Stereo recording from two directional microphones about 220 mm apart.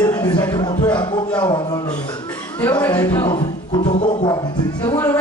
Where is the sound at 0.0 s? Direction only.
20° left (ahead or behind).